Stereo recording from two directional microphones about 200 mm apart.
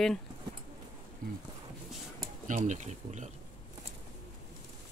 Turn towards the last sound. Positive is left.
turn(degrees=-35)  # may be behind; listen again after turning